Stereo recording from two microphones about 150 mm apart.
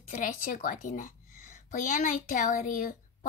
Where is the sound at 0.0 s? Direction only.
60° left (ahead or behind).